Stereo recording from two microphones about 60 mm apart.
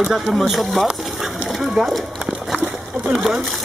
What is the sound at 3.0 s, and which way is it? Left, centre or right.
Speech, centre.